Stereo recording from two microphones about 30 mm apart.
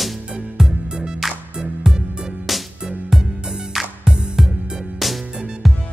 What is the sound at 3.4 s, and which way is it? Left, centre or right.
Music, right.